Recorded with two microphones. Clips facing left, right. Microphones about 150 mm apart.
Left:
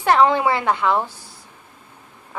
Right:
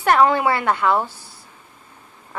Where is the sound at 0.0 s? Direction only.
15° left (ahead or behind).